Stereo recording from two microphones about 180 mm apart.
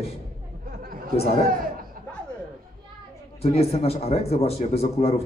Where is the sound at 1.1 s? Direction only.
35° left (ahead or behind).